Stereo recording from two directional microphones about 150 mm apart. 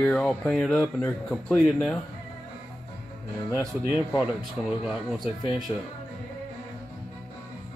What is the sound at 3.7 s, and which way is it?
Speech, centre (ahead or behind).